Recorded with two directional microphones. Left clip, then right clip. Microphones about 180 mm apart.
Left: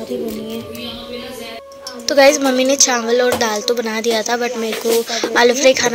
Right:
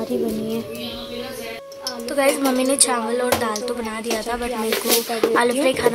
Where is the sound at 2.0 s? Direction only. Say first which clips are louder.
Left 8 dB; 20° left (ahead or behind).